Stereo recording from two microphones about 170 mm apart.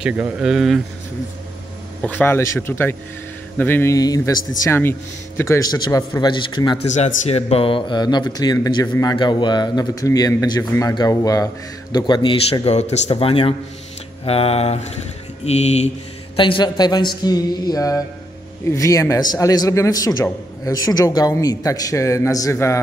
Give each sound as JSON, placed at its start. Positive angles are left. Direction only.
{"t": 0.0, "sound": "speech", "side_deg": -5}
{"t": 2.0, "sound": "a man's voice", "side_deg": 10}
{"t": 7.2, "sound": "speech", "side_deg": 35}
{"t": 16.3, "sound": "speech", "side_deg": 30}